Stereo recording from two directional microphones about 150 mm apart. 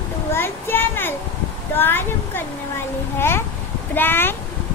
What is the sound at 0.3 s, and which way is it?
A child's voice, 15° left (ahead or behind).